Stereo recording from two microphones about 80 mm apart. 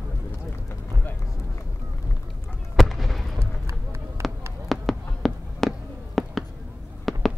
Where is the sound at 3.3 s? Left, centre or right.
Right.